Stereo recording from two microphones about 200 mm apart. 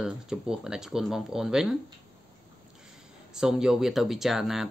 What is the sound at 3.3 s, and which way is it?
Speech, 5° right (ahead or behind).